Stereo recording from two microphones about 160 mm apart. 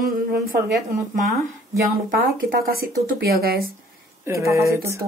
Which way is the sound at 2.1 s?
65° right (ahead or behind).